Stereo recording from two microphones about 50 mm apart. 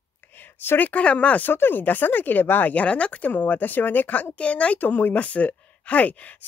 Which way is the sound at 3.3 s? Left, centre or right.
Left.